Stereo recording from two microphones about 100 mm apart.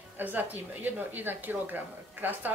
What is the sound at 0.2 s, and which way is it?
Speech, 15° right (ahead or behind).